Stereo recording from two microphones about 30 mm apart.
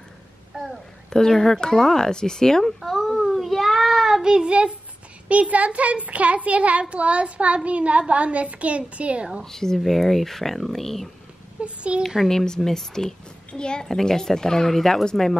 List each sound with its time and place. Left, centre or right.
1.3 s speech: centre
2.8 s child singing: centre
4.2 s speech: right
5.3 s a child's voice: right
9.4 s speech: centre
11.6 s a woman's voice: right
12.3 s speech: centre
13.5 s a child's voice: left
13.8 s speech: centre
14.7 s speech: centre